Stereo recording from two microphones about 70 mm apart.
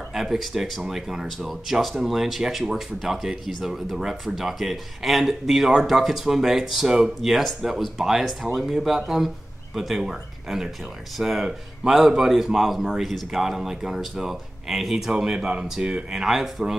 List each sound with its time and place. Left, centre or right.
0.1 s speech: centre